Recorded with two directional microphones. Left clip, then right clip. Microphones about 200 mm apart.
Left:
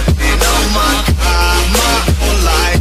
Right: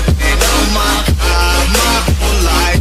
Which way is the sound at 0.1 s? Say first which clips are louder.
Even; centre (ahead or behind).